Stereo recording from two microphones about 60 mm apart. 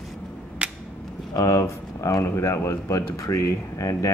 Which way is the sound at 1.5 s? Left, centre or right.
Left.